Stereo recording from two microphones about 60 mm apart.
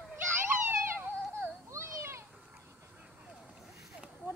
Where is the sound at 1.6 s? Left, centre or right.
Right.